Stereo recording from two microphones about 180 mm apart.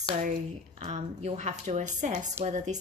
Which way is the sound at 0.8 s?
35° right (ahead or behind).